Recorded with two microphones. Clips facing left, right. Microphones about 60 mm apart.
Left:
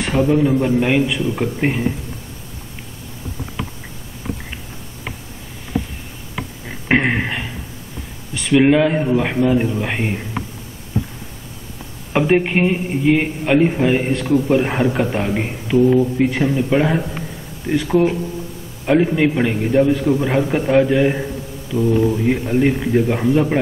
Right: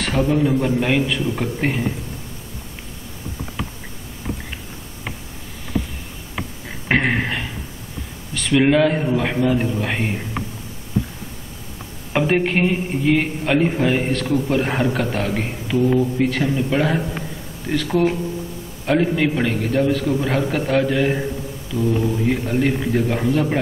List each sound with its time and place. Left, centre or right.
0.0 s a man's voice: centre
6.9 s a sound: centre
8.4 s a man's voice: centre
12.1 s a man's voice: centre
15.8 s speech: centre
16.3 s a man's voice: centre
16.5 s a man's voice: centre
21.7 s speech: centre
22.1 s a man's voice: centre